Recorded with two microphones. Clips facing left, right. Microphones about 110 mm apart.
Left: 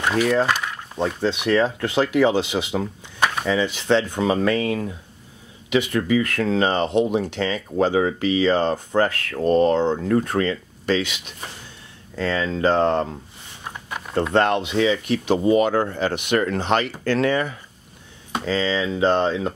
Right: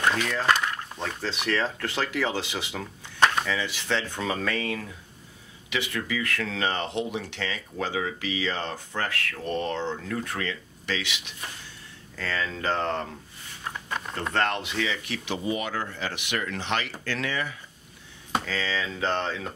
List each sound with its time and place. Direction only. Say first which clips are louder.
0.0 s a sound: left 6 dB; 10° left (ahead or behind)
0.9 s speech: left 9 dB; 20° left (ahead or behind)
3.2 s a sound: even; 5° left (ahead or behind)
3.4 s speech: left 9 dB; 30° left (ahead or behind)
7.2 s speech: left 9 dB; 35° left (ahead or behind)
12.2 s speech: left 9 dB; 25° left (ahead or behind)
13.7 s a sound: even; 15° left (ahead or behind)
14.3 s speech: left 7 dB; 20° left (ahead or behind)
15.2 s speech: left 12 dB; 45° left (ahead or behind)
18.4 s speech: left 8 dB; 25° left (ahead or behind)